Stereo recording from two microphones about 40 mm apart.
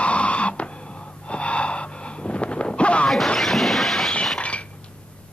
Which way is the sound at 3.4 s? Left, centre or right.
Centre.